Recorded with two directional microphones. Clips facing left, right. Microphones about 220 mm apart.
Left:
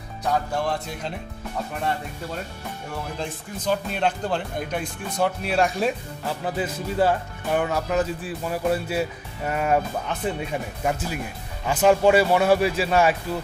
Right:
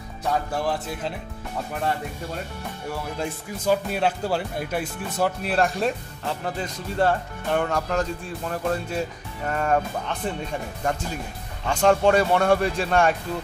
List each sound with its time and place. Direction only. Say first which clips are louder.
0.7 s speech: right 1 dB; 5° right (ahead or behind)
3.2 s speech: right 2 dB; 5° right (ahead or behind); by 9.8 s 10° left (ahead or behind)
10.8 s speech: left 1 dB; 10° left (ahead or behind)